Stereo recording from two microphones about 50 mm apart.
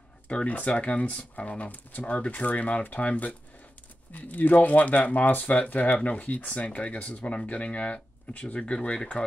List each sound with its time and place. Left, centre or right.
0.3 s speech: left